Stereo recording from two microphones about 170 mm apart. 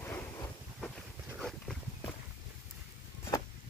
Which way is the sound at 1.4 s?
5° left (ahead or behind).